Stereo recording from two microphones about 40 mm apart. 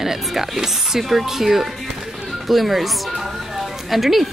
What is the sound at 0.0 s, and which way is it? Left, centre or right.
Speech, centre.